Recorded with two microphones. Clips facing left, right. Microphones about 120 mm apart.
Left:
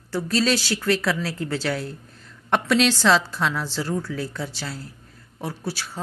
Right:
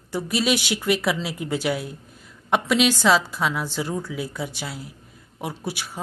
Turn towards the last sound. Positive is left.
turn(degrees=-15)  # may be behind; listen again after turning